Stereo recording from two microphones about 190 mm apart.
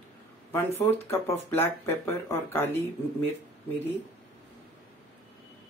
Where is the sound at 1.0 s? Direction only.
10° left (ahead or behind).